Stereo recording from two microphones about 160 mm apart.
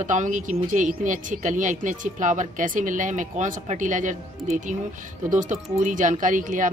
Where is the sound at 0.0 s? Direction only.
50° right (ahead or behind).